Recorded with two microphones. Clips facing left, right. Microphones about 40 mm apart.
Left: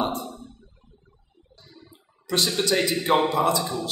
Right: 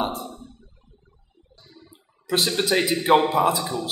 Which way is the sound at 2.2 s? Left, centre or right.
Centre.